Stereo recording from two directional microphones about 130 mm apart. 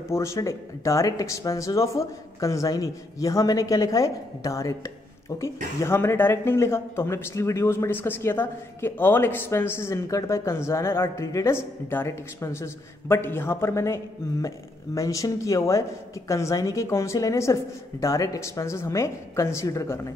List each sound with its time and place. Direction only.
0.1 s speech: 20° left (ahead or behind)
5.8 s speech: 20° left (ahead or behind)